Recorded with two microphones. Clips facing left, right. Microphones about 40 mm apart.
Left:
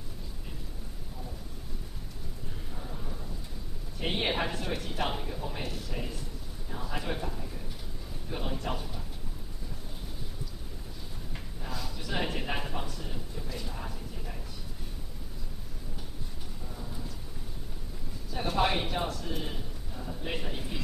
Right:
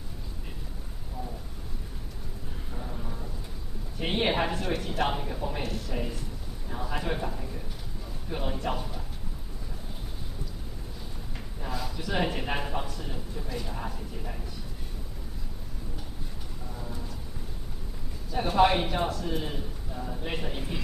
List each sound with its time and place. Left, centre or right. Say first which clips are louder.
4.0 s speech: right 4 dB; centre
5.6 s a man's voice: right 4 dB; centre
11.6 s a man's voice: right 5 dB; centre
18.3 s speech: right 6 dB; centre